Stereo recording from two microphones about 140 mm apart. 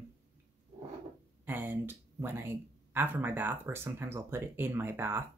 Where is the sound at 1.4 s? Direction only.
15° right (ahead or behind).